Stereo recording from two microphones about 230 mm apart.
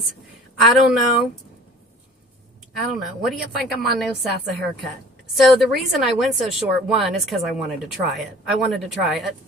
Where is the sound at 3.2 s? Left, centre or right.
Centre.